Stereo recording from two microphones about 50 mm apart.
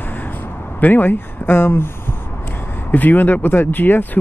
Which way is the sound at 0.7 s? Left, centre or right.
Left.